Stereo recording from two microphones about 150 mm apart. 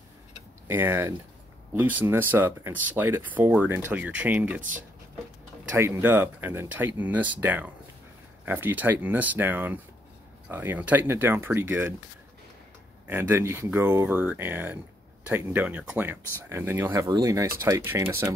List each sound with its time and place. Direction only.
0.7 s speech: 15° right (ahead or behind)
5.8 s speech: 15° right (ahead or behind)
13.0 s speech: 15° right (ahead or behind)